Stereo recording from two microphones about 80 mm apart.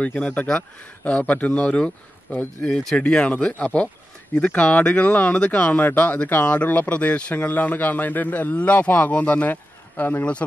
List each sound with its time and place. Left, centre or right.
0.0 s speech: centre